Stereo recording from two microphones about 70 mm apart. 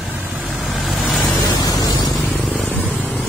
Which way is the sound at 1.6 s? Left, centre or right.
Left.